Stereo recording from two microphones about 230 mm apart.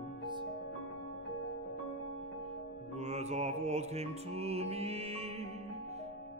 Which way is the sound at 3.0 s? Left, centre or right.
Right.